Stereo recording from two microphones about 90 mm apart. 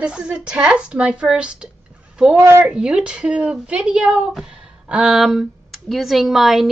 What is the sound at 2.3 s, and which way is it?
Speech, 25° right (ahead or behind).